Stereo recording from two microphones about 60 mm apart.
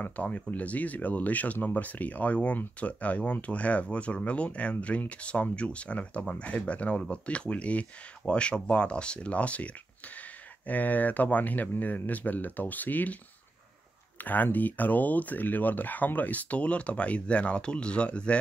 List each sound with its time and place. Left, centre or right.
0.0 s speech: left
14.2 s speech: left